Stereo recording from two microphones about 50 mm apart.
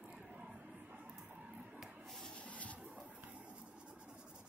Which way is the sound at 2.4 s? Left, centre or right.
Left.